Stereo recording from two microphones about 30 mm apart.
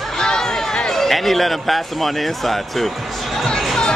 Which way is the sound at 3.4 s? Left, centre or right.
Centre.